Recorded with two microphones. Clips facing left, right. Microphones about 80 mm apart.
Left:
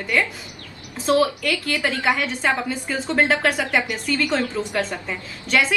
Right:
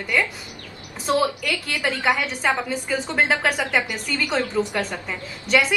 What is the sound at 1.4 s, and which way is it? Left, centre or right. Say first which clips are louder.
A woman's voice: left 2 dB; centre.